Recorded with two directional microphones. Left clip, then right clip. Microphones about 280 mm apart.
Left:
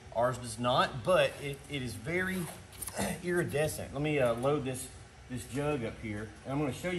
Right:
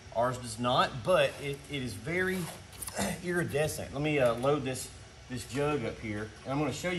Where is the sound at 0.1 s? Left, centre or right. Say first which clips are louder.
Even; centre.